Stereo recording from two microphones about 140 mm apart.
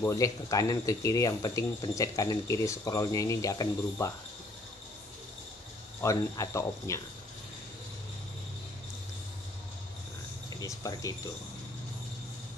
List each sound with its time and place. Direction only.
0.0 s speech: 20° left (ahead or behind)
5.9 s speech: 25° left (ahead or behind)
10.6 s speech: 25° left (ahead or behind)